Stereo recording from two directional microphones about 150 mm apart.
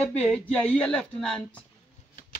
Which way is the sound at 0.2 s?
10° left (ahead or behind).